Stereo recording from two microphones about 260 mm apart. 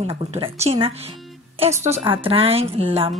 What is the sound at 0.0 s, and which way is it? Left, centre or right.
A woman's voice, right.